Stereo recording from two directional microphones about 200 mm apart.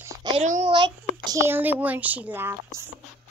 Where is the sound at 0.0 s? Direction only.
20° right (ahead or behind).